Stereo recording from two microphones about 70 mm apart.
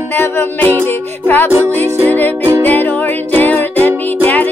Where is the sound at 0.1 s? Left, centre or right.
Left.